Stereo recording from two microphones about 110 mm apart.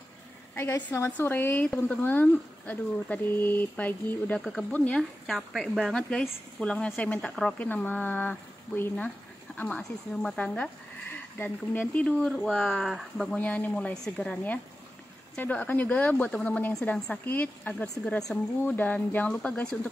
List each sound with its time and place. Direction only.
0.6 s a woman's voice: 20° left (ahead or behind)
4.4 s speech: centre (ahead or behind)
4.6 s speech: 10° left (ahead or behind)
5.2 s speech: centre (ahead or behind)
7.6 s speech: 15° left (ahead or behind)
13.4 s speech: 15° left (ahead or behind)